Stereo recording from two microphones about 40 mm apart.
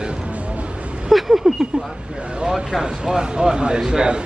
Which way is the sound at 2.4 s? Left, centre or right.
Centre.